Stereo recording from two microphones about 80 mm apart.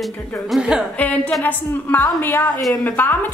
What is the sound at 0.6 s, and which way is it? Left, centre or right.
Speech, centre.